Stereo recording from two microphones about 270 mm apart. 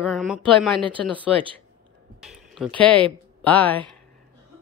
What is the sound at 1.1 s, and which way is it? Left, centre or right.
Speech, centre.